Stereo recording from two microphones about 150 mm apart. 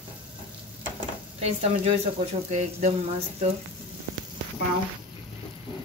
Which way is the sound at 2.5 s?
50° right (ahead or behind).